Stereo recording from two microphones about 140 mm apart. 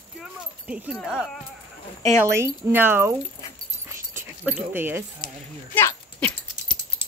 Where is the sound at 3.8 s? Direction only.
15° right (ahead or behind).